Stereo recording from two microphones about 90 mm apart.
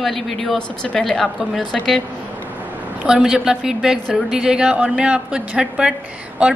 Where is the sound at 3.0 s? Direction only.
10° right (ahead or behind).